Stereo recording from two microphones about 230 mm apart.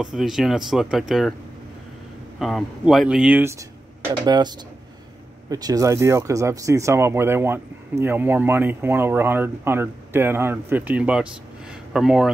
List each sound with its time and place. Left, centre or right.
0.0 s speech: centre
2.3 s speech: centre